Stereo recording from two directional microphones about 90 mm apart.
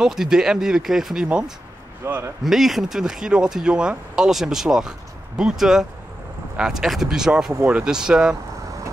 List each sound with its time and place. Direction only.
0.0 s speech: 5° right (ahead or behind)
2.0 s speech: 25° right (ahead or behind)
2.4 s speech: centre (ahead or behind)